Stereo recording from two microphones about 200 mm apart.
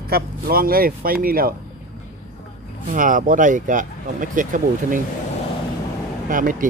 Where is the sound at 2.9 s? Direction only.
40° right (ahead or behind).